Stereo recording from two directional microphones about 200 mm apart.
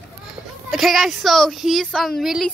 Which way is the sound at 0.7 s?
Centre (ahead or behind).